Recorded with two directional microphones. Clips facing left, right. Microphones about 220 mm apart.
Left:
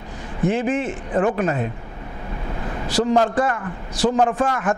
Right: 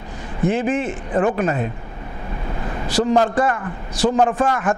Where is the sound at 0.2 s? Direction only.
15° right (ahead or behind).